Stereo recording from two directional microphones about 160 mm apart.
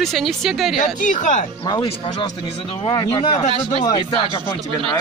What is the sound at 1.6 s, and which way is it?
Speech, 30° left (ahead or behind).